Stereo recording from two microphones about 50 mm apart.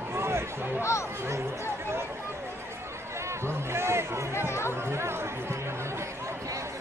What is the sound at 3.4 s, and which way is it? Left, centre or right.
Speech, right.